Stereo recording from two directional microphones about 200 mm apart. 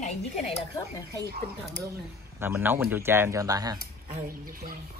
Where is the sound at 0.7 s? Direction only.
15° left (ahead or behind).